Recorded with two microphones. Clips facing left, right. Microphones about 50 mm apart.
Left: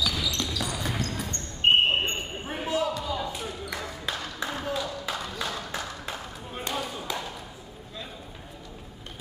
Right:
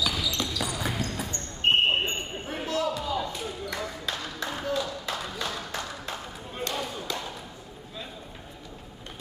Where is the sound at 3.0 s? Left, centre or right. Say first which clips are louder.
Right 1 dB; centre.